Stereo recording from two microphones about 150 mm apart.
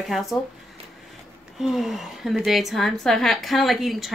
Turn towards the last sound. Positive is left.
turn(degrees=0)  # may be behind; listen again after turning